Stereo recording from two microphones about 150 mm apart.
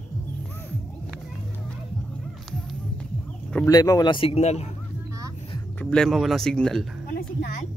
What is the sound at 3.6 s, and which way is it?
Speech, 25° left (ahead or behind).